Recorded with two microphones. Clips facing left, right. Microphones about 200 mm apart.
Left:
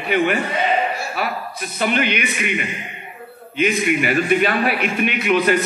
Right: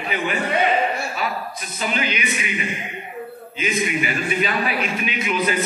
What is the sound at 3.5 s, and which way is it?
A man's voice, 55° left (ahead or behind).